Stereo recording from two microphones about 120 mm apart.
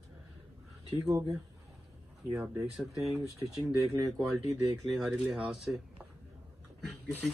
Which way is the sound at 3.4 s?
Centre (ahead or behind).